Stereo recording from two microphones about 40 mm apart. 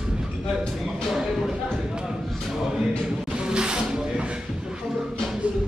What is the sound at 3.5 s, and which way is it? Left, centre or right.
Snake, right.